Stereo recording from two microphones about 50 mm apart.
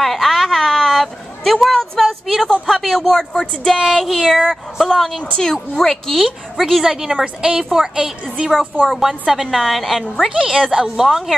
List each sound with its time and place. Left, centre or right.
0.0 s a sound: centre
2.7 s speech: centre
6.2 s a woman's voice: centre
8.8 s speech: centre
10.3 s a woman's voice: centre